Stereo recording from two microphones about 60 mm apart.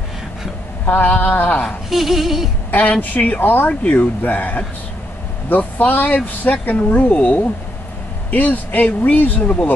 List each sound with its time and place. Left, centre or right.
0.8 s speech: left
1.9 s a sound: centre
2.7 s speech: left